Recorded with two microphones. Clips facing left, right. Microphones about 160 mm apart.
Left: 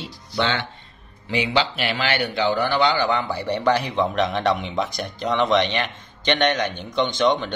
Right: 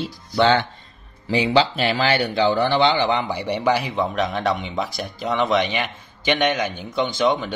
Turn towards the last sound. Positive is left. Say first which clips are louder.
# even
turn(degrees=-5)  # may be behind; listen again after turning